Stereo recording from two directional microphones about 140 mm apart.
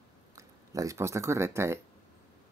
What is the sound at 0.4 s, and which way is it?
Speech, 25° right (ahead or behind).